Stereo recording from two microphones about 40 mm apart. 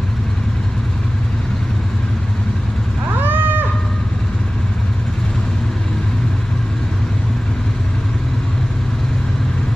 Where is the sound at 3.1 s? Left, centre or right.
Right.